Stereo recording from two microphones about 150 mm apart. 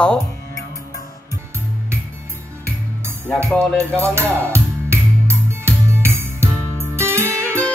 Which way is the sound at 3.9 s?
15° right (ahead or behind).